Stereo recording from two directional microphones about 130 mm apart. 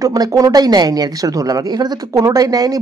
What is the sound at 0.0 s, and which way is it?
Speech, 30° right (ahead or behind).